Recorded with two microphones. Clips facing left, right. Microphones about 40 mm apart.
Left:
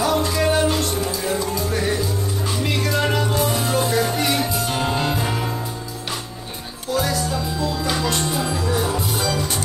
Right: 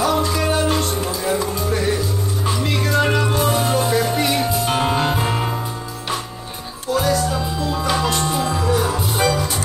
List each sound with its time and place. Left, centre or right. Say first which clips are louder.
0.0 s music: right 1 dB; centre
1.4 s music: right 2 dB; centre
3.7 s music: right 2 dB; centre
4.6 s music: right 3 dB; right
6.9 s music: right 3 dB; centre